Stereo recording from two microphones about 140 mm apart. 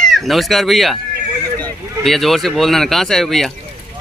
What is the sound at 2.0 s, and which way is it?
Speech, centre (ahead or behind).